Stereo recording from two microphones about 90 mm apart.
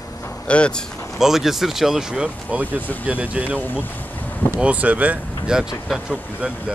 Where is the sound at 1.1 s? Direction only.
5° right (ahead or behind).